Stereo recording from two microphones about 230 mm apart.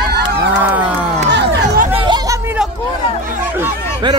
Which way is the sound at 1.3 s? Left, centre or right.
Right.